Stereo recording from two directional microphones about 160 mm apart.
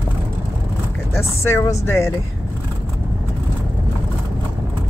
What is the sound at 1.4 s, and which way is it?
Speech, 15° left (ahead or behind).